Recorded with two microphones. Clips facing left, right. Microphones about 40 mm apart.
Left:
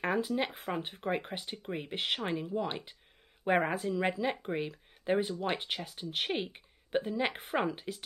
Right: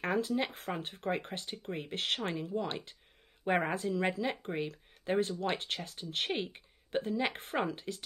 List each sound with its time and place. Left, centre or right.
0.0 s speech: centre
2.7 s speech: centre
3.4 s speech: centre